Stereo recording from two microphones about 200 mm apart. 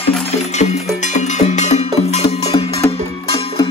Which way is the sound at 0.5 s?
35° left (ahead or behind).